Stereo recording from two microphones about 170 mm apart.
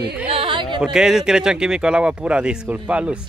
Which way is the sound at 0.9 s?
5° right (ahead or behind).